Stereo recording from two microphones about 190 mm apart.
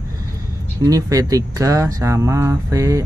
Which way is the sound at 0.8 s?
20° right (ahead or behind).